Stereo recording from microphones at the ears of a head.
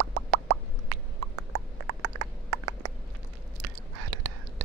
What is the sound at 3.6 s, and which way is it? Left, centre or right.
Whispering, right.